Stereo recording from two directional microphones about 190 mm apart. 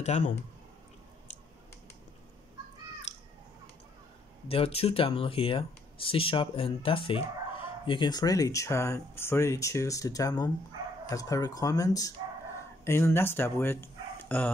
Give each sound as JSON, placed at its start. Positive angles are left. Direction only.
{"t": 0.0, "sound": "speech", "side_deg": 35}
{"t": 3.1, "sound": "a sound", "side_deg": 35}
{"t": 4.5, "sound": "speech", "side_deg": 30}